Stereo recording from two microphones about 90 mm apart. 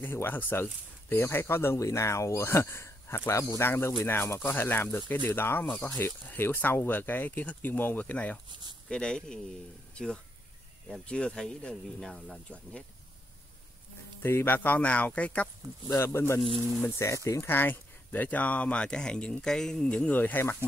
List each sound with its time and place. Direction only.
0.0 s speech: 25° left (ahead or behind)
14.2 s speech: 25° left (ahead or behind)
16.0 s speech: 30° left (ahead or behind)